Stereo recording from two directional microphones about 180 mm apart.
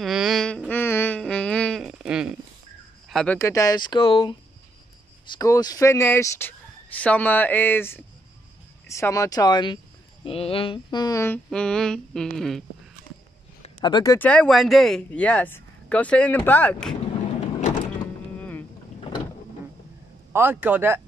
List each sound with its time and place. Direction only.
0.0 s music: centre (ahead or behind)
0.7 s a sound: 10° left (ahead or behind)
3.3 s speech: 15° left (ahead or behind); by 12.6 s centre (ahead or behind)
13.6 s a sound: 25° left (ahead or behind)
14.1 s speech: 5° left (ahead or behind)
18.4 s boat: 10° left (ahead or behind)
20.3 s speech: 10° right (ahead or behind)